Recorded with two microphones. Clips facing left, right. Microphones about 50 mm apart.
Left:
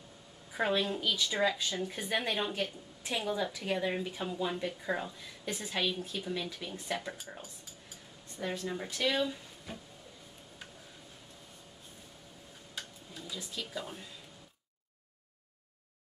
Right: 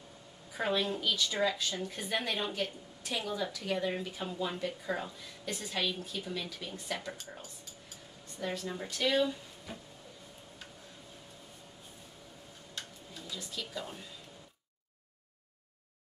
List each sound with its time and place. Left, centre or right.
0.5 s speech: centre
1.1 s speech: centre
1.5 s speech: centre
3.0 s speech: centre
8.4 s speech: centre
12.7 s tick-tock: centre